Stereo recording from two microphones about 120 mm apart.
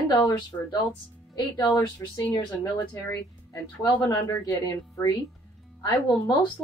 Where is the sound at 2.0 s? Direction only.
25° left (ahead or behind).